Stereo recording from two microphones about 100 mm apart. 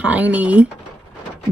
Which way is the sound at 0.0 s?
15° right (ahead or behind).